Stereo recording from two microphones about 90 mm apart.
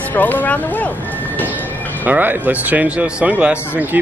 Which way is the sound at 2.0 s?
20° right (ahead or behind).